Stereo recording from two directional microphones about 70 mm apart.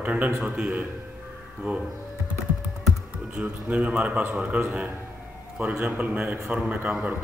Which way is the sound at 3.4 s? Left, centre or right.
Centre.